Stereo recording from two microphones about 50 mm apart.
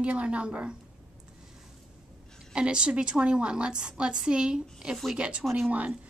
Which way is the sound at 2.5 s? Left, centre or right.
Right.